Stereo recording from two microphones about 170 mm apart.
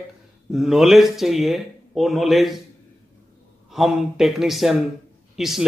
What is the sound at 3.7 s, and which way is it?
Speech, centre (ahead or behind).